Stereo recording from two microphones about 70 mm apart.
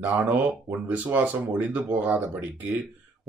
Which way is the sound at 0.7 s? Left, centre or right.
Right.